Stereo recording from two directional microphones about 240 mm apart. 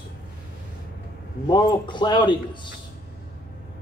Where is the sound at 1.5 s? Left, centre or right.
Centre.